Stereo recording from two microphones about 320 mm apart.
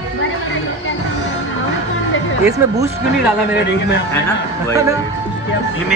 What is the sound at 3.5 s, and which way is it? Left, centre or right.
Speech, left.